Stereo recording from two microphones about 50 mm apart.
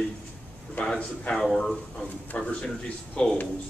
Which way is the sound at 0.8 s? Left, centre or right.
Left.